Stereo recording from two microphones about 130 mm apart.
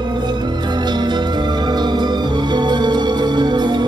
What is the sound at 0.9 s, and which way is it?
Music, 35° right (ahead or behind).